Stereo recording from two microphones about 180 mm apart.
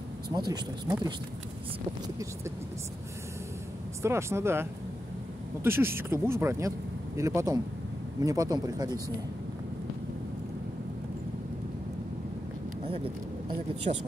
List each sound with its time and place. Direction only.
0.3 s speech: 20° right (ahead or behind)
4.0 s speech: 15° right (ahead or behind)
13.9 s speech: 35° right (ahead or behind)